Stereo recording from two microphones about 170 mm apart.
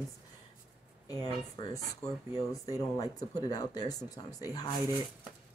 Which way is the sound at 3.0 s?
20° left (ahead or behind).